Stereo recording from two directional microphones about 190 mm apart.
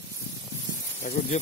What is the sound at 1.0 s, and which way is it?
Speech, 45° left (ahead or behind).